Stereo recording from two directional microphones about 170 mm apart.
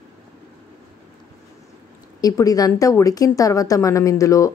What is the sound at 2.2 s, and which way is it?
A woman's voice, 20° left (ahead or behind).